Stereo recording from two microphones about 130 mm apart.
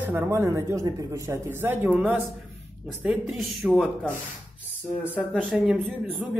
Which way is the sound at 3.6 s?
10° right (ahead or behind).